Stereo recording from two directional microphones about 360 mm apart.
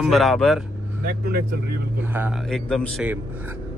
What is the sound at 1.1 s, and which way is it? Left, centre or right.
Speech, right.